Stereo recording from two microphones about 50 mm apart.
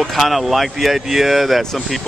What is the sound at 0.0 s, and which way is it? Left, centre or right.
Speech, centre.